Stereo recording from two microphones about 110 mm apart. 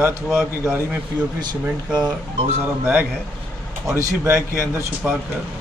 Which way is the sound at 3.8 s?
30° right (ahead or behind).